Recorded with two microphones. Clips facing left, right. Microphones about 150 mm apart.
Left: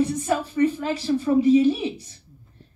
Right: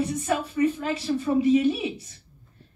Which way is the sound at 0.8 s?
30° left (ahead or behind).